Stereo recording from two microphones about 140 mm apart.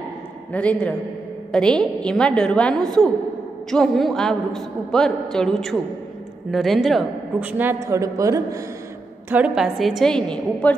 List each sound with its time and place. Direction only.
0.5 s a man's voice: 10° left (ahead or behind)
7.3 s a woman's voice: 10° right (ahead or behind)
9.3 s a woman's voice: 5° right (ahead or behind)